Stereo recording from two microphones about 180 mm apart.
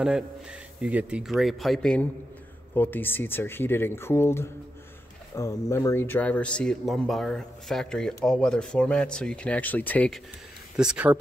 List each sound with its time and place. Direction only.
0.0 s speech: 5° right (ahead or behind)
10.8 s speech: 5° right (ahead or behind)